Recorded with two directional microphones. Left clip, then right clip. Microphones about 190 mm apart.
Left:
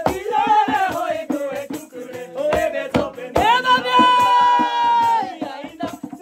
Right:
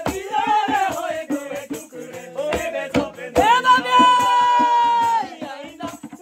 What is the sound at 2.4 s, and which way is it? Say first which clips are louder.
Music: left 5 dB; 40° left (ahead or behind).